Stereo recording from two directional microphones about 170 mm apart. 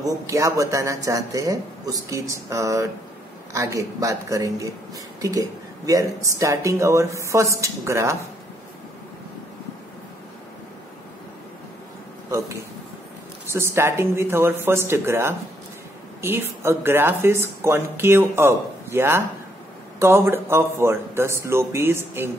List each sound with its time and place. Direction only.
0.0 s a man's voice: 20° right (ahead or behind)
13.5 s speech: 15° right (ahead or behind)